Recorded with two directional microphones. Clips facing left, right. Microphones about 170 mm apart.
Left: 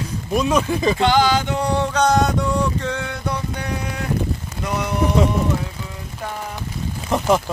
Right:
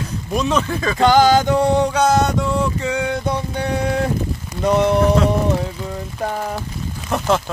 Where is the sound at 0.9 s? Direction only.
45° right (ahead or behind).